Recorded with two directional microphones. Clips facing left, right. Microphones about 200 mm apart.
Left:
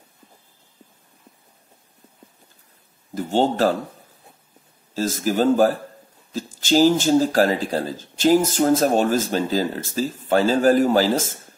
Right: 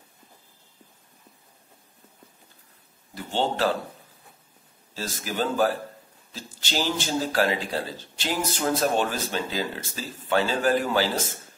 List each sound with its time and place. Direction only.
3.2 s speech: 45° left (ahead or behind)
4.9 s speech: 45° left (ahead or behind)